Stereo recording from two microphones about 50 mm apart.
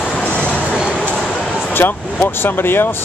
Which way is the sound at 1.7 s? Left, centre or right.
Left.